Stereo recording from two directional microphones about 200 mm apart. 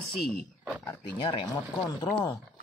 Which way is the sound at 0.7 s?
5° left (ahead or behind).